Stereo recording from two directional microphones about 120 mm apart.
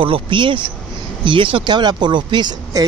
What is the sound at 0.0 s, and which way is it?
Speech, 45° right (ahead or behind).